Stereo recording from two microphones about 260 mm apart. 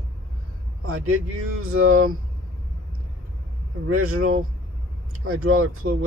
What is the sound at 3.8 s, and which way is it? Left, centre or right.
Speech, right.